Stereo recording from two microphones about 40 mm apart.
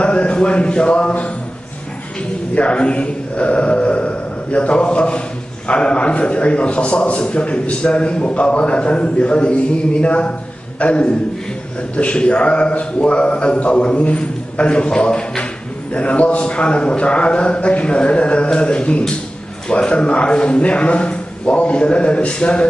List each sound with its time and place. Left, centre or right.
0.0 s a man's voice: left
2.5 s a man's voice: left